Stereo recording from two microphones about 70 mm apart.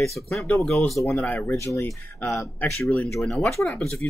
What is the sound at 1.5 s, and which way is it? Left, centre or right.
Speech, left.